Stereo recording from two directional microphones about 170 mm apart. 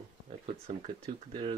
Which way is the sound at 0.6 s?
35° right (ahead or behind).